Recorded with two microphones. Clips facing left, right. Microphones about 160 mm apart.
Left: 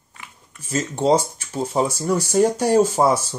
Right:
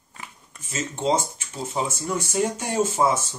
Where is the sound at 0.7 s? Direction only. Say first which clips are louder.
Left 6 dB; 40° left (ahead or behind).